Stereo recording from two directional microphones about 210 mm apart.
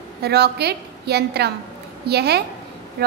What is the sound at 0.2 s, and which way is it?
A woman's voice, 50° right (ahead or behind).